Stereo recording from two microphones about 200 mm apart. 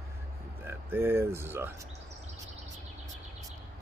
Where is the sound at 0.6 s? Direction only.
10° right (ahead or behind).